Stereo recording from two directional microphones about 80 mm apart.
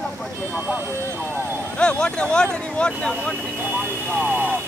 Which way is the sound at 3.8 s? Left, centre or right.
Right.